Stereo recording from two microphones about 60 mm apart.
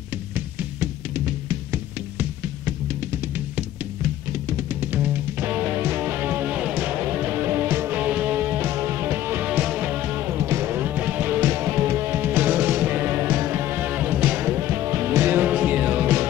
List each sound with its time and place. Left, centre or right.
4.7 s music: right
8.0 s music: right
9.5 s music: right
10.3 s music: right
11.4 s music: right